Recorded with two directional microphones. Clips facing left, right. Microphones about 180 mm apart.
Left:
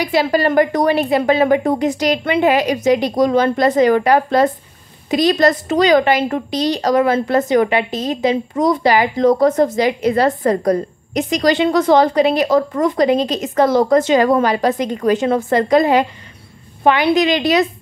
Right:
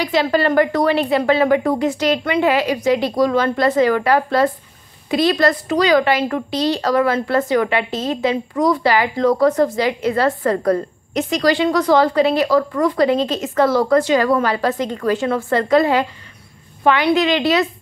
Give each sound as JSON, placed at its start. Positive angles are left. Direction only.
{"t": 0.0, "sound": "a woman's voice", "side_deg": 10}
{"t": 17.1, "sound": "a woman's voice", "side_deg": 15}